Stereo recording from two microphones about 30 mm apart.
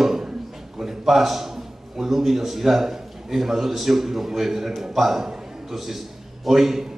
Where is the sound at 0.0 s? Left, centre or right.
Centre.